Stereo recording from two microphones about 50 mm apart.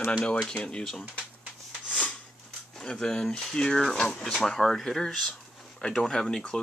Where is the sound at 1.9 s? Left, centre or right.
Left.